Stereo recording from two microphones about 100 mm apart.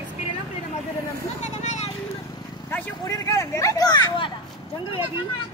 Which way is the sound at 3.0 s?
35° left (ahead or behind).